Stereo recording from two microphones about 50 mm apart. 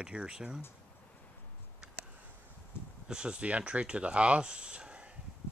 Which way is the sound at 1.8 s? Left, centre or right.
Centre.